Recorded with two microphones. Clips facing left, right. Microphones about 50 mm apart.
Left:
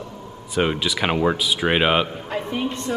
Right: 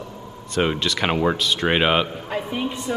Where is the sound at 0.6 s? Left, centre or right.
Centre.